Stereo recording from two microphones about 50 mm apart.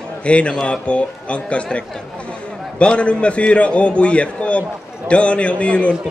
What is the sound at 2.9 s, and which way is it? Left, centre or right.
A man's voice, left.